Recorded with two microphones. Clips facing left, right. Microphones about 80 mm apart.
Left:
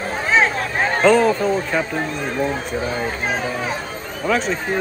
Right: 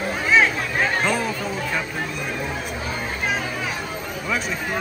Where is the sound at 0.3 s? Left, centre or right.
Left.